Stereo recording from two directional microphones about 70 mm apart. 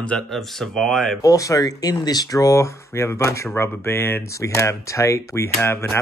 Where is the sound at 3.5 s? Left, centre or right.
Left.